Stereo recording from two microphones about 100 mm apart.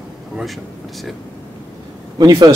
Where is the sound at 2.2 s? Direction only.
40° right (ahead or behind).